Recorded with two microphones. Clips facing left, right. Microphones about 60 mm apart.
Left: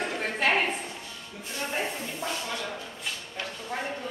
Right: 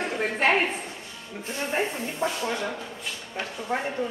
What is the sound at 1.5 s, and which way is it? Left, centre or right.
Speech, right.